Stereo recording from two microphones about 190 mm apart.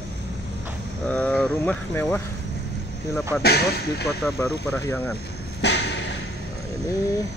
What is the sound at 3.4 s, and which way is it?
Speech, 60° left (ahead or behind).